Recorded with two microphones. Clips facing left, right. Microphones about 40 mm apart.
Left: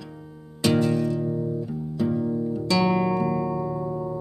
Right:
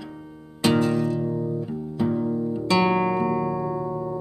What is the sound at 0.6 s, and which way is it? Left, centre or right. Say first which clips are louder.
Music: right 1 dB; centre.